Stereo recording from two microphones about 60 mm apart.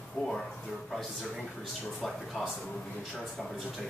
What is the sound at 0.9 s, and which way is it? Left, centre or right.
Speech, centre.